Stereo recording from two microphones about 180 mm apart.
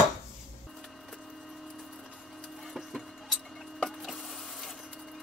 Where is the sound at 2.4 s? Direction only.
Centre (ahead or behind).